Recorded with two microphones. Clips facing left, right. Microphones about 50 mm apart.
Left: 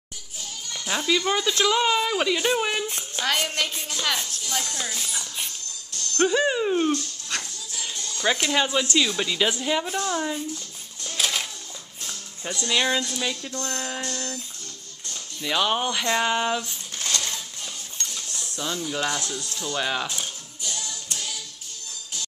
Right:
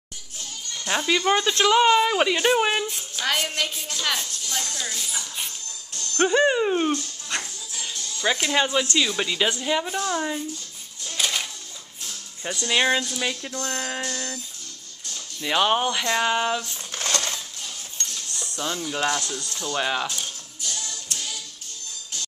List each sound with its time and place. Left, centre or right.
0.9 s speech: centre
3.2 s speech: centre
5.9 s music: right
6.4 s dog: centre
8.2 s speech: centre
11.1 s music: centre
12.6 s speech: right
15.4 s speech: centre
16.0 s speech: centre
16.9 s coin: right
18.6 s speech: centre
19.0 s speech: centre
19.7 s speech: centre